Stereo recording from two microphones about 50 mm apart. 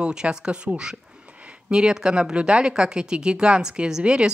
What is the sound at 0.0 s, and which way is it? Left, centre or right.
Speech, centre.